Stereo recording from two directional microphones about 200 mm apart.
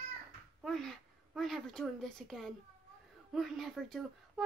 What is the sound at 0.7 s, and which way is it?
A woman's voice, centre (ahead or behind).